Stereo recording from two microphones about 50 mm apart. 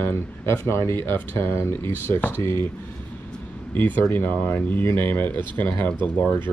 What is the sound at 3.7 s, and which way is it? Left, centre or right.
Speech, left.